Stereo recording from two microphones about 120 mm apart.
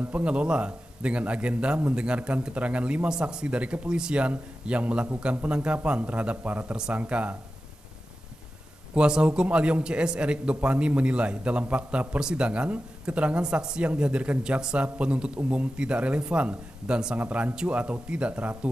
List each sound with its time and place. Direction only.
0.0 s a man's voice: 10° right (ahead or behind)
8.9 s a man's voice: 5° right (ahead or behind)